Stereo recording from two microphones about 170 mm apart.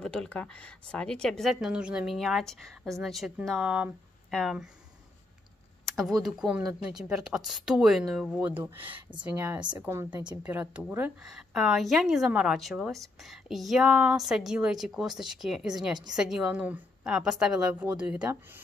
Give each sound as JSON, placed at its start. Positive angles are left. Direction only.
{"t": 0.0, "sound": "a woman's voice", "side_deg": 5}
{"t": 5.9, "sound": "a woman's voice", "side_deg": 0}